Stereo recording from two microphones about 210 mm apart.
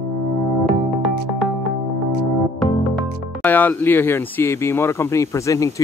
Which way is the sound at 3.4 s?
10° left (ahead or behind).